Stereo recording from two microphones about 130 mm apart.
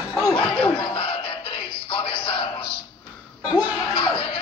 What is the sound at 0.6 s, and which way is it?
Music, 45° left (ahead or behind).